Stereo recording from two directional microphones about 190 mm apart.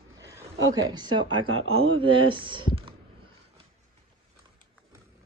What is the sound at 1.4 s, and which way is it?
Speech, 90° right.